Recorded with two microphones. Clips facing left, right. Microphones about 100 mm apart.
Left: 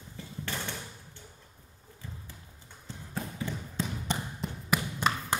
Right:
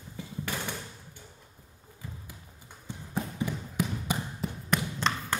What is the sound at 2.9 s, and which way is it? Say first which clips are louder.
Music: right 4 dB; 15° right (ahead or behind).